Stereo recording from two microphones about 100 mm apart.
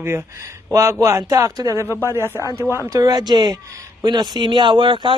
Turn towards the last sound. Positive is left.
turn(degrees=-55)  # may be behind; listen again after turning